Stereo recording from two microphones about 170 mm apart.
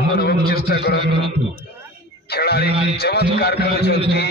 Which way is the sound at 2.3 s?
70° left (ahead or behind).